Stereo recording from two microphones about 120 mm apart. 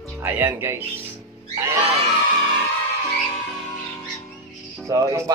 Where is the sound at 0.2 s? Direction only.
20° right (ahead or behind).